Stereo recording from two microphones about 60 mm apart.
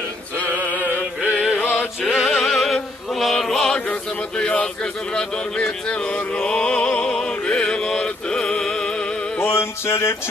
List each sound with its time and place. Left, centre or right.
1.2 s music: centre
2.0 s chant: centre
4.4 s speech: centre
5.1 s a sound: centre
9.4 s music: left